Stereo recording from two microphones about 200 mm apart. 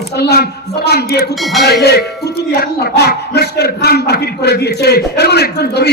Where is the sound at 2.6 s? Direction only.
55° left (ahead or behind).